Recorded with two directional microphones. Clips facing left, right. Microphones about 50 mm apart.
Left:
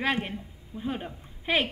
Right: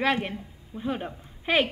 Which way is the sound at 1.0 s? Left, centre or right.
Right.